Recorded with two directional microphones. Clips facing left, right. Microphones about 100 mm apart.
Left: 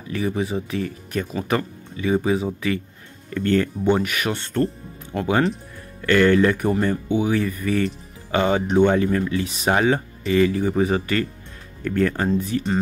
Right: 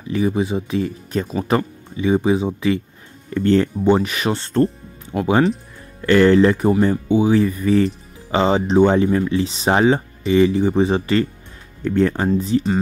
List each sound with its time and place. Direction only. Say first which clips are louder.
0.1 s speech: right 4 dB; 20° right (ahead or behind)
5.1 s speech: right 4 dB; 15° right (ahead or behind)